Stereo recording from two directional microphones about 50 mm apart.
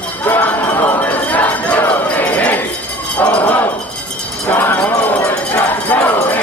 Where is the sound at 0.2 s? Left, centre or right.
Left.